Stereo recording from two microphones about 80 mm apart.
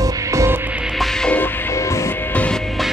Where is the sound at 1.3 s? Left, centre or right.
Left.